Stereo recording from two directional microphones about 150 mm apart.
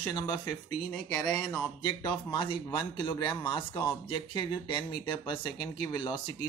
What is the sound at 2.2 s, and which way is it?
A man's voice, 30° left (ahead or behind).